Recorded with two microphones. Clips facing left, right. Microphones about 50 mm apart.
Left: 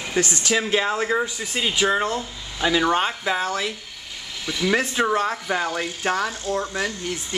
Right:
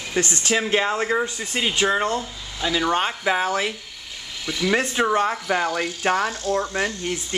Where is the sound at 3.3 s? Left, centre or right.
Centre.